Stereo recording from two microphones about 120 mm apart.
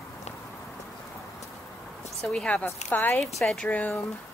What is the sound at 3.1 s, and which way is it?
Speech, 5° left (ahead or behind).